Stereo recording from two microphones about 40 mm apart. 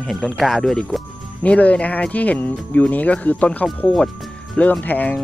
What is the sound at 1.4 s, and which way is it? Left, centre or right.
Speech, left.